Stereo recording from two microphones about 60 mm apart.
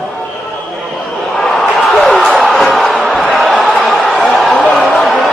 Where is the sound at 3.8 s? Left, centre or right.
Centre.